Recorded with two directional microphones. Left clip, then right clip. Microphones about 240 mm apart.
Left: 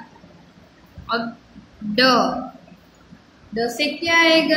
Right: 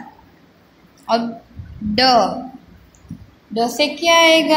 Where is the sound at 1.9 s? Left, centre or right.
Right.